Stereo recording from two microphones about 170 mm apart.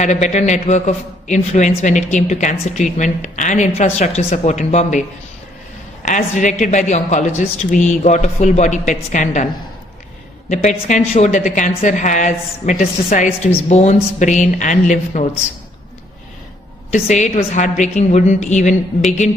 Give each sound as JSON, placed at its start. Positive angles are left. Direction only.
{"t": 0.0, "sound": "a man's voice", "side_deg": 45}
{"t": 6.0, "sound": "a man's voice", "side_deg": 45}
{"t": 10.5, "sound": "a man's voice", "side_deg": 45}
{"t": 16.9, "sound": "a man's voice", "side_deg": 45}